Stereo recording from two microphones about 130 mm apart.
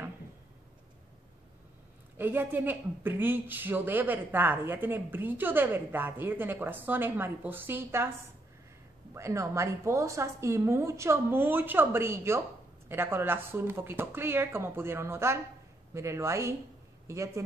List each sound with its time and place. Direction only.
2.1 s a woman's voice: 15° right (ahead or behind)
9.1 s a woman's voice: 20° right (ahead or behind)